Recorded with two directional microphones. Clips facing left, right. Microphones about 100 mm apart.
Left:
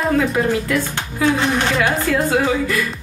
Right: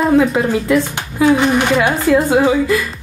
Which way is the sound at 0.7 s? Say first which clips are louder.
Right 5 dB; 20° right (ahead or behind).